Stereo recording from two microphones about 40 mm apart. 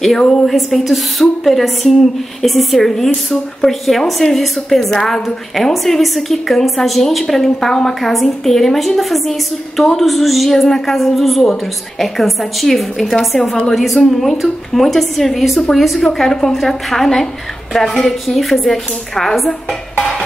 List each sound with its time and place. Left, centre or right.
0.2 s a woman's voice: left
0.5 s a woman's voice: centre
16.0 s a woman's voice: centre